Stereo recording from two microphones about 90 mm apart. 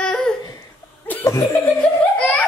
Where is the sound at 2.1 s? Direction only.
15° left (ahead or behind).